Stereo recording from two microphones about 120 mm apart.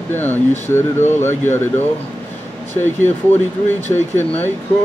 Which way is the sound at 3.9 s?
15° left (ahead or behind).